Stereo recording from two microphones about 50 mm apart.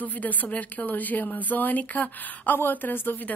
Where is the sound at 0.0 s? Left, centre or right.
Left.